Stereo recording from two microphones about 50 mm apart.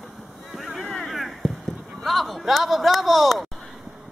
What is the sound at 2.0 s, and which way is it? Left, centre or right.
Speech, centre.